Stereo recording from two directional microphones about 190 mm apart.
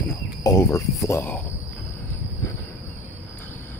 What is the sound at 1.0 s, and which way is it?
Cricket, 10° left (ahead or behind).